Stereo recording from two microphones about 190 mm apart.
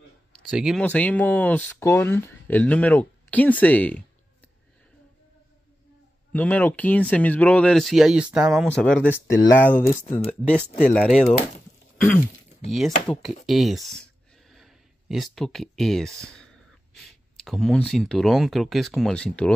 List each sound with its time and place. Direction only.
0.3 s speech: centre (ahead or behind)
0.8 s speech: 10° left (ahead or behind)
6.3 s speech: 10° left (ahead or behind)
10.0 s speech: 40° left (ahead or behind)
10.5 s speech: 5° left (ahead or behind)
12.7 s speech: centre (ahead or behind)
14.5 s a sound: centre (ahead or behind)
16.9 s speech: centre (ahead or behind)